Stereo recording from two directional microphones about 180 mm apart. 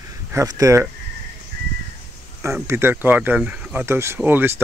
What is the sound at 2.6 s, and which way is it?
Speech, 15° right (ahead or behind).